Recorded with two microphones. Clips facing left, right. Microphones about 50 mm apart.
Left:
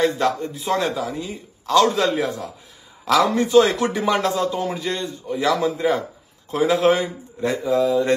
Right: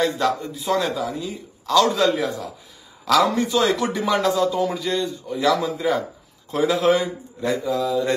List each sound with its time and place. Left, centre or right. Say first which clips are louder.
0.0 s a man's voice: left 1 dB; left
3.8 s speech: left 2 dB; centre
4.1 s a man's voice: right 3 dB; left